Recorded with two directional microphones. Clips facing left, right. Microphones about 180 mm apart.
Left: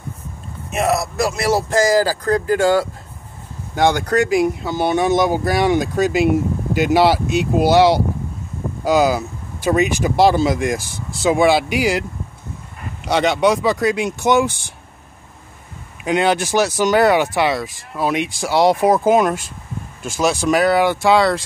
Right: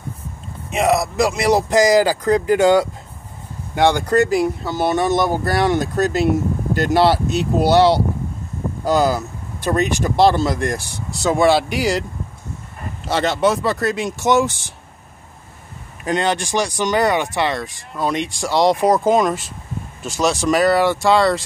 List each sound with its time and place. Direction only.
0.7 s speech: 15° right (ahead or behind)
4.2 s speech: 5° left (ahead or behind)
8.8 s speech: 5° left (ahead or behind)
13.0 s speech: centre (ahead or behind)
16.0 s speech: 5° left (ahead or behind)